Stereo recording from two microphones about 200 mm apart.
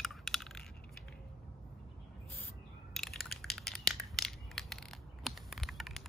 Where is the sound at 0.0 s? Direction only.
Centre (ahead or behind).